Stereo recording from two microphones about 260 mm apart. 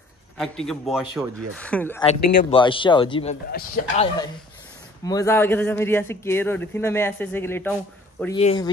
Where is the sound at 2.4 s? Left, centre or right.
Left.